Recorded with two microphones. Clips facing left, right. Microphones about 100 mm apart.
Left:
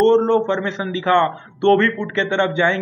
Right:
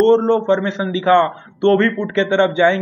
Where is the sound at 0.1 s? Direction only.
25° right (ahead or behind).